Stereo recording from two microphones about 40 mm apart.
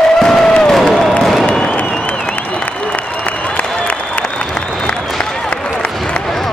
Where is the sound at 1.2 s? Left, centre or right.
Centre.